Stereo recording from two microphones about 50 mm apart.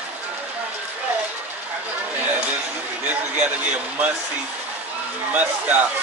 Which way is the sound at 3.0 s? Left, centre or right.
Right.